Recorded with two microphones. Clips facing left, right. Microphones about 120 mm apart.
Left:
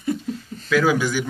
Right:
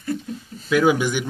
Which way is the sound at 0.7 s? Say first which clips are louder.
Right 1 dB; 20° right (ahead or behind).